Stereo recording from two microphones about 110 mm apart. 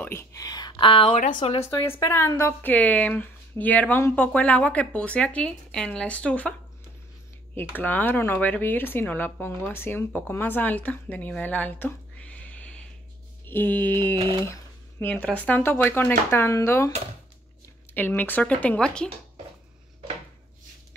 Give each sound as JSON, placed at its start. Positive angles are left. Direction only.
{"t": 0.0, "sound": "speech", "side_deg": 25}
{"t": 1.1, "sound": "speech", "side_deg": 80}
{"t": 1.6, "sound": "speech", "side_deg": 20}
{"t": 7.7, "sound": "speech", "side_deg": 15}
{"t": 17.9, "sound": "speech", "side_deg": 15}